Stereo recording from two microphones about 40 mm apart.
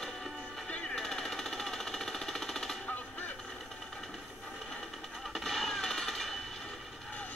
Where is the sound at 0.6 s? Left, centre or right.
Left.